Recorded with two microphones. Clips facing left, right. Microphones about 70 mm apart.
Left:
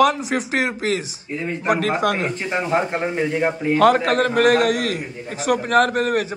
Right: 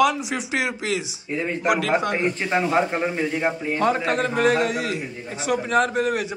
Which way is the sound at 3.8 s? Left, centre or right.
Left.